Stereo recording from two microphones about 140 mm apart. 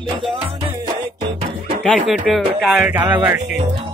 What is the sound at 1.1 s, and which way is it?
Music, 35° right (ahead or behind).